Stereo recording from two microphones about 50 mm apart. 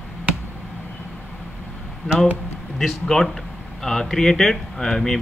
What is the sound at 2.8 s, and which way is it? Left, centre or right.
A man's voice, centre.